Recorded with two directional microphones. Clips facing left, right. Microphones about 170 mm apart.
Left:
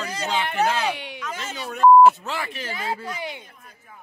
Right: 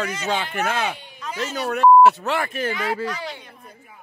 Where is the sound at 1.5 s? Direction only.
70° right (ahead or behind); by 2.7 s 55° right (ahead or behind).